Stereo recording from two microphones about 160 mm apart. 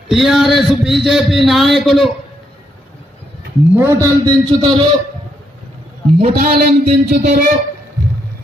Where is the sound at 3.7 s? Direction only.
20° right (ahead or behind).